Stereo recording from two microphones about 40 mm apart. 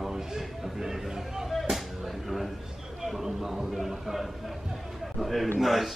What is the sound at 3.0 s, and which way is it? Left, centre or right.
Speech, centre.